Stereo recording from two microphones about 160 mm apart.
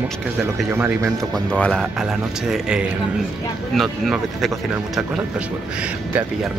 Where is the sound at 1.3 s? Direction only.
5° left (ahead or behind).